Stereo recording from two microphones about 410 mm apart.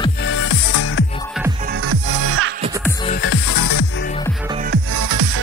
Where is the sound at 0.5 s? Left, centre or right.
Left.